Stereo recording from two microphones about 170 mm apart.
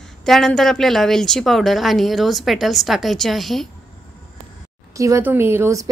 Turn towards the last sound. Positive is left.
turn(degrees=-15)  # may be behind; listen again after turning